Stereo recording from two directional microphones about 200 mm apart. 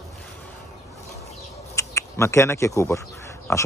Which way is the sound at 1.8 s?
15° left (ahead or behind).